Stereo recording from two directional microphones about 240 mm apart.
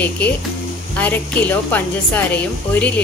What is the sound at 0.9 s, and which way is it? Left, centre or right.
A woman's voice, centre.